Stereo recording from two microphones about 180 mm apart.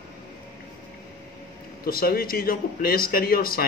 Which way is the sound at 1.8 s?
55° left (ahead or behind).